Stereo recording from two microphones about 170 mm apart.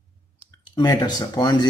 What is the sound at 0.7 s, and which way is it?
Speech, 25° left (ahead or behind).